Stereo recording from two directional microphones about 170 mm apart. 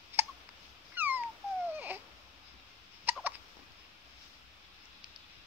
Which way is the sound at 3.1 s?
10° right (ahead or behind).